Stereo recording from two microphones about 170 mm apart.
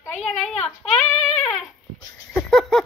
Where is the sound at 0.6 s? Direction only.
5° left (ahead or behind).